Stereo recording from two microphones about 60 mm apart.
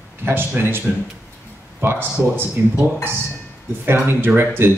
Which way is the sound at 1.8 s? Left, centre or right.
Right.